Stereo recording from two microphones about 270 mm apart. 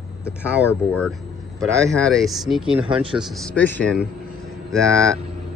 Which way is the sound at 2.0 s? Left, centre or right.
Centre.